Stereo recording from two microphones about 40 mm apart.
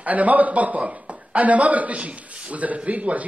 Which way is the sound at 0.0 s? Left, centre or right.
Right.